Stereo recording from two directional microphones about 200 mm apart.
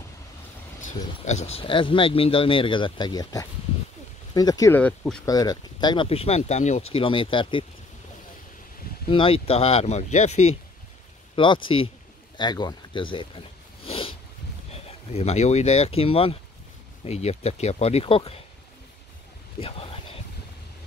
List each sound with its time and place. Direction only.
1.2 s speech: 35° left (ahead or behind); by 5.2 s 5° left (ahead or behind)
5.2 s speech: 20° left (ahead or behind)
9.1 s speech: 25° left (ahead or behind)
13.8 s a sound: 30° left (ahead or behind)
14.7 s speech: 30° left (ahead or behind)
19.6 s a sound: 30° left (ahead or behind)